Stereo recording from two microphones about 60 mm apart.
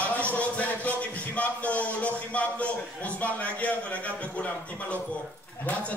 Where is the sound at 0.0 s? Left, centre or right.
Left.